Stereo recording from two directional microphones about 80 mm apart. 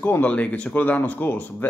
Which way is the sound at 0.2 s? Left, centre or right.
Centre.